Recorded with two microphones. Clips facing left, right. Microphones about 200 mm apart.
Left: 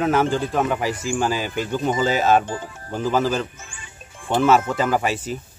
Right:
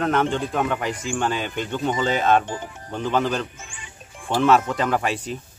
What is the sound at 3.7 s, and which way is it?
Music, 15° right (ahead or behind).